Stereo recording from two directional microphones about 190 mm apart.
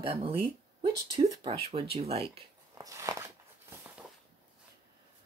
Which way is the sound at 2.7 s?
15° right (ahead or behind).